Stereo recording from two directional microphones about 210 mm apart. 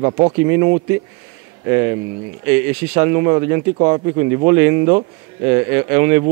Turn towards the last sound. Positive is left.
turn(degrees=-10)  # may be behind; listen again after turning